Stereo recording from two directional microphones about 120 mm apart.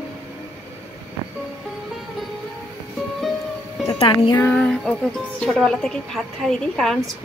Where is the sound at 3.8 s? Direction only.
50° left (ahead or behind).